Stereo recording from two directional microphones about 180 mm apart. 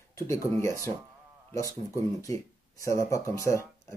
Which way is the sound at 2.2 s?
15° left (ahead or behind).